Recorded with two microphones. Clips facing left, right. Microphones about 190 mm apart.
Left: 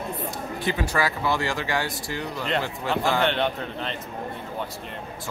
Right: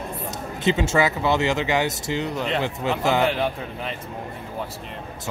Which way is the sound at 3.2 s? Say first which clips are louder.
Right 1 dB; 5° right (ahead or behind).